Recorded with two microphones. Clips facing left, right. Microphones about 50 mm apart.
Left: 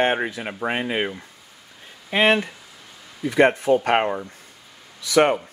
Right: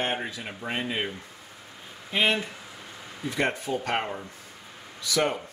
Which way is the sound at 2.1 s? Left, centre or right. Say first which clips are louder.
Left 7 dB; left.